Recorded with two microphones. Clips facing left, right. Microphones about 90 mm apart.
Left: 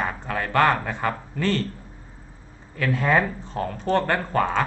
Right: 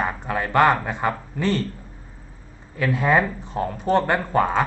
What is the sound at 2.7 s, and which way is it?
A man's voice, 15° right (ahead or behind).